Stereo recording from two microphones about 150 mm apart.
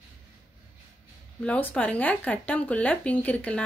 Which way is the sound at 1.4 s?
10° left (ahead or behind).